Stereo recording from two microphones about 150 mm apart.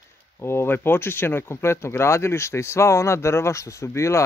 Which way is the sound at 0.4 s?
15° left (ahead or behind).